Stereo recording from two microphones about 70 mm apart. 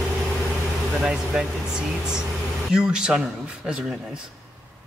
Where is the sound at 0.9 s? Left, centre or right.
Centre.